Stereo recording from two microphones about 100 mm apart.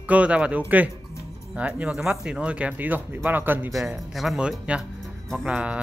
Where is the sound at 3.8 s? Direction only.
Centre (ahead or behind).